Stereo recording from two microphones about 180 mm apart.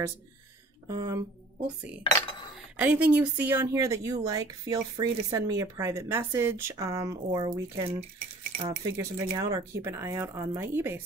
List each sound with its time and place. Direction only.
0.8 s speech: 20° right (ahead or behind)
2.8 s speech: 10° right (ahead or behind)